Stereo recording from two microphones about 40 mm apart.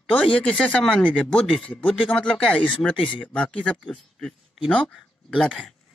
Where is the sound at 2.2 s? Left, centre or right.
Centre; by 3.8 s left.